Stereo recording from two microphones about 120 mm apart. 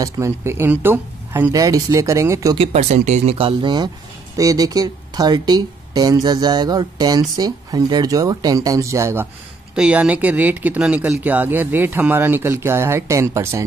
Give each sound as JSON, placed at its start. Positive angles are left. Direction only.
{"t": 0.0, "sound": "speech", "side_deg": -25}
{"t": 2.5, "sound": "speech", "side_deg": -55}
{"t": 4.4, "sound": "speech", "side_deg": -30}
{"t": 9.8, "sound": "speech", "side_deg": -10}